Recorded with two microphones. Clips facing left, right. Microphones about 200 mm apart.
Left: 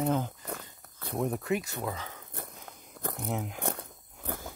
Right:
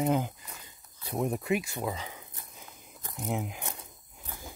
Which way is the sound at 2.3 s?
60° left (ahead or behind).